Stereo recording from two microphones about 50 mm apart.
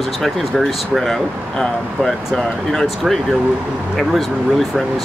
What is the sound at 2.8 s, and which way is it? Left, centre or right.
Speech, centre.